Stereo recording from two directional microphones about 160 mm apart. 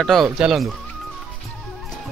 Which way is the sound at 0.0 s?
Centre (ahead or behind).